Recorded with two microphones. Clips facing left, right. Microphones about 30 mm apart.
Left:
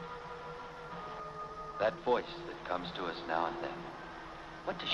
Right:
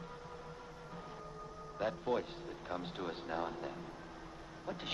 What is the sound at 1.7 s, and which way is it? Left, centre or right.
Speech, left.